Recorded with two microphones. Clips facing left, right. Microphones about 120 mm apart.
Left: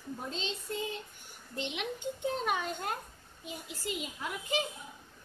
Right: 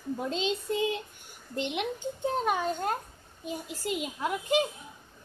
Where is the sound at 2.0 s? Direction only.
35° right (ahead or behind).